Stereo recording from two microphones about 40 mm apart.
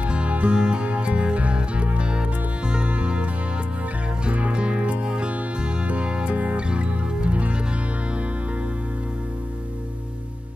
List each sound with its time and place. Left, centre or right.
0.0 s music: right
4.3 s music: right